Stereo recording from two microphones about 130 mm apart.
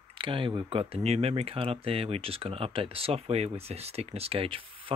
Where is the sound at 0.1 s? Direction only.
40° right (ahead or behind).